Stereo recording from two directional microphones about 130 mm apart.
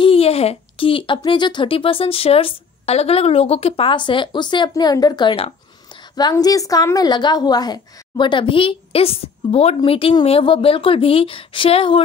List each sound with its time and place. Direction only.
0.0 s a woman's voice: 45° left (ahead or behind)